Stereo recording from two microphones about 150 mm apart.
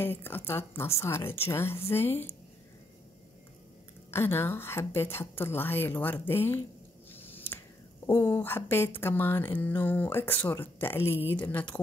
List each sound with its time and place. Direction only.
0.0 s speech: 15° left (ahead or behind)
4.1 s speech: 15° left (ahead or behind)
7.1 s squish: 15° left (ahead or behind)
8.1 s speech: 15° left (ahead or behind)